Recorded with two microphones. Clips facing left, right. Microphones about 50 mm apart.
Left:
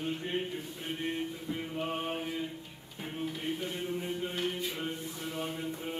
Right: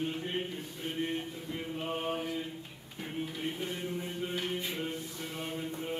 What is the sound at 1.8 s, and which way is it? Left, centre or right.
Mantra, centre.